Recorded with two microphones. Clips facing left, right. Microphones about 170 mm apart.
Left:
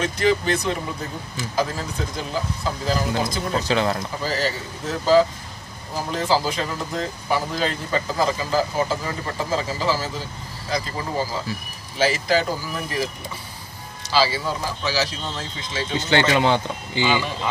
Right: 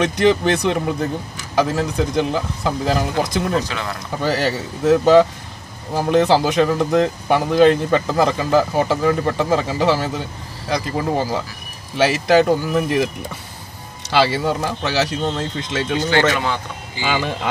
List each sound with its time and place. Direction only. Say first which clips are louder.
0.0 s speech: right 5 dB; 70° right (ahead or behind)
3.6 s speech: left 6 dB; 30° left (ahead or behind)
4.2 s speech: right 5 dB; 70° right (ahead or behind)
12.0 s speech: right 6 dB; 65° right (ahead or behind)
14.1 s speech: right 4 dB; 65° right (ahead or behind)
16.1 s speech: left 2 dB; 25° left (ahead or behind)